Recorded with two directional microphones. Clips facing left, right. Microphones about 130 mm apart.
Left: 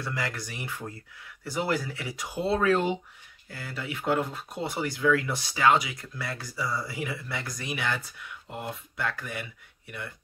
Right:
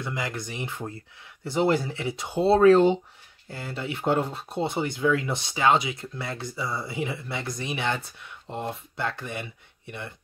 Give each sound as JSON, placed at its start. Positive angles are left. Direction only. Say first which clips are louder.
{"t": 0.0, "sound": "speech", "louder": "right 2 dB", "side_deg": -20}